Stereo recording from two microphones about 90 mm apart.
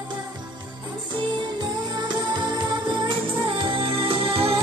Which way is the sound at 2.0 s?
55° right (ahead or behind).